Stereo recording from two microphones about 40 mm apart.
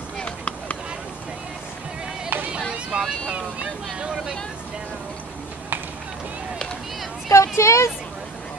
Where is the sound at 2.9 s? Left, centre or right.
Centre.